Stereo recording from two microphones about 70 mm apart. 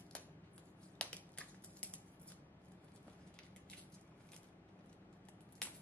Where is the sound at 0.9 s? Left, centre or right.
Centre.